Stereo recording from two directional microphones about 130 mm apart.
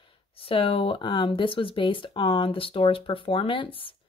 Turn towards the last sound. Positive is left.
turn(degrees=40)  # may be behind; listen again after turning